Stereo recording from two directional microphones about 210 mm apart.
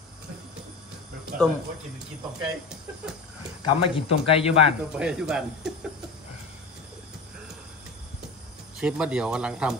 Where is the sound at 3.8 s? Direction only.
25° left (ahead or behind).